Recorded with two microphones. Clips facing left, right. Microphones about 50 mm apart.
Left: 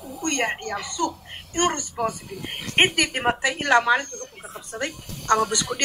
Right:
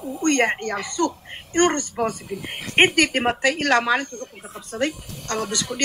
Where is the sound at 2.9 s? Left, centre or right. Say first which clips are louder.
Right 3 dB; right.